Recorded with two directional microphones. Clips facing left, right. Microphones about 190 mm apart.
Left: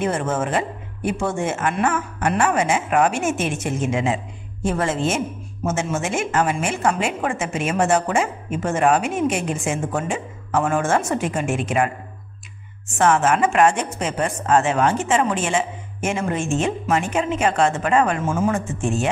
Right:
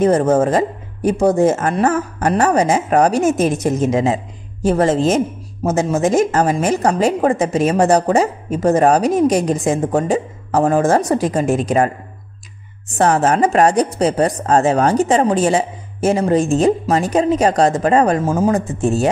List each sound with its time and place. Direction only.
0.0 s speech: 40° right (ahead or behind)